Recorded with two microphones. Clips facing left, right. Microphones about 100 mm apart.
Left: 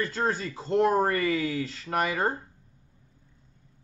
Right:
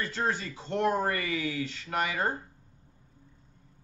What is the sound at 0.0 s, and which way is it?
Speech, 40° left (ahead or behind).